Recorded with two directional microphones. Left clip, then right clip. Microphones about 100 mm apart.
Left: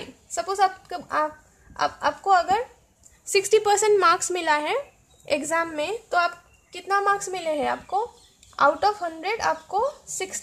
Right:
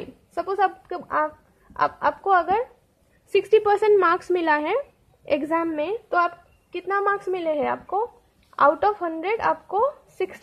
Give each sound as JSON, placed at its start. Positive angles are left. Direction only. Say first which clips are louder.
{"t": 0.3, "sound": "a woman's voice", "louder": "even", "side_deg": -40}